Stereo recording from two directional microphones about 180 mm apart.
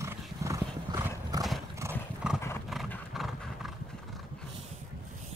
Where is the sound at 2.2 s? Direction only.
5° right (ahead or behind).